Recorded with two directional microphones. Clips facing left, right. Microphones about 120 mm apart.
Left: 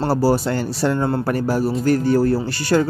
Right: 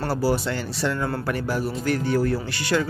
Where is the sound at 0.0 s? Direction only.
40° left (ahead or behind).